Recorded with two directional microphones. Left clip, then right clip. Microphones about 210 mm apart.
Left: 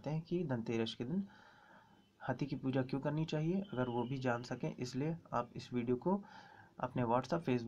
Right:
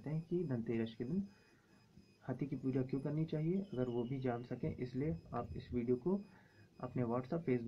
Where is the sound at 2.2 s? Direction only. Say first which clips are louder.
Left 3 dB; 30° left (ahead or behind).